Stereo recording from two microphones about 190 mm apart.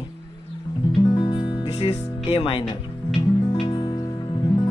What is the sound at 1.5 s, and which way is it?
Speech, 30° left (ahead or behind).